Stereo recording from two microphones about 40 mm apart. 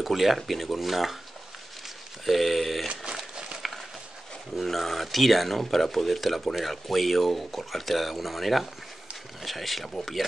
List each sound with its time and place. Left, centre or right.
0.0 s speech: centre
2.2 s speech: centre
3.1 s a sound: centre
4.6 s speech: centre